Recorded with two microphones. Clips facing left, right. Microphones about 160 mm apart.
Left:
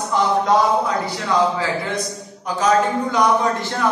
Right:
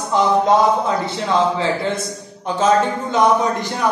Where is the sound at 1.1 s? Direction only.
25° right (ahead or behind).